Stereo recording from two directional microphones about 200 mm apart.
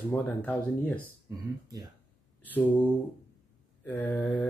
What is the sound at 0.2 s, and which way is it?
Speech, 5° left (ahead or behind).